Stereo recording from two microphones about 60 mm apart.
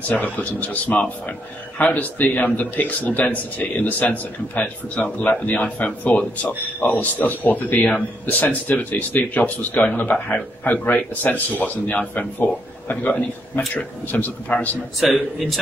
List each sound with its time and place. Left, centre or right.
0.1 s a man's voice: left
15.0 s a man's voice: centre